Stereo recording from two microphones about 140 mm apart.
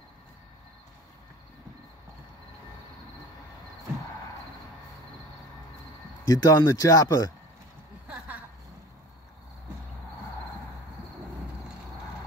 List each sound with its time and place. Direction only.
6.2 s speech: 25° left (ahead or behind)